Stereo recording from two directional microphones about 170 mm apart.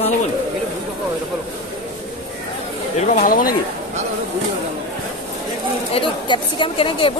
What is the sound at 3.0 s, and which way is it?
Speech, 50° left (ahead or behind).